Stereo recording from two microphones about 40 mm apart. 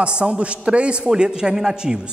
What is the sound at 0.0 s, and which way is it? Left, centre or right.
A man's voice, right.